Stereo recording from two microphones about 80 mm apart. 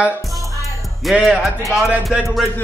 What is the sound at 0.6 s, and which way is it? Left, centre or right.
Music, centre.